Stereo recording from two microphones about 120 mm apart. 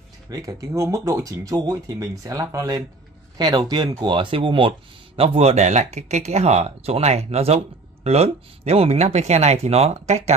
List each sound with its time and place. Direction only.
0.3 s speech: 30° right (ahead or behind); by 10.3 s 65° right (ahead or behind)